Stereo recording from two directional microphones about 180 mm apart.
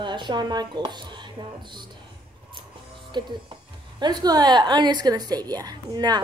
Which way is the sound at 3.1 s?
25° right (ahead or behind).